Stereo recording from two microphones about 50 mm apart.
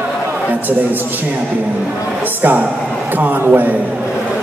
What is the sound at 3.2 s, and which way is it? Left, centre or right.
Speech, right.